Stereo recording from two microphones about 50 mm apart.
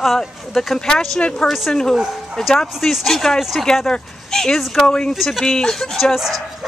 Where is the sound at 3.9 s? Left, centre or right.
Centre.